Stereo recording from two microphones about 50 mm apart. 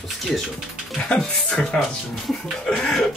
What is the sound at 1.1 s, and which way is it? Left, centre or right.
Speech, centre.